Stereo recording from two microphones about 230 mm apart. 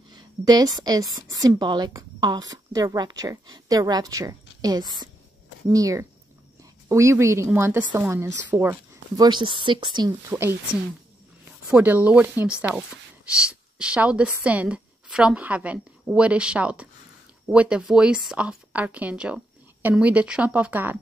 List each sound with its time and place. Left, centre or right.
0.1 s a woman's voice: centre
10.3 s speech: centre